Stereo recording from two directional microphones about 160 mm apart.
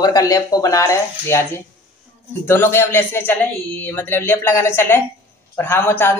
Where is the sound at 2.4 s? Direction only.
15° left (ahead or behind).